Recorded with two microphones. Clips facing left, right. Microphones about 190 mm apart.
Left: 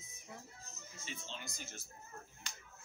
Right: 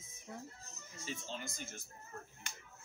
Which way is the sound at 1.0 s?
45° right (ahead or behind).